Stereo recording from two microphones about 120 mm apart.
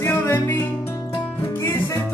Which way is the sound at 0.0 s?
25° left (ahead or behind).